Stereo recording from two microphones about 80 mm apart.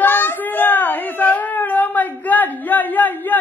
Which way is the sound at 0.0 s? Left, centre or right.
Left.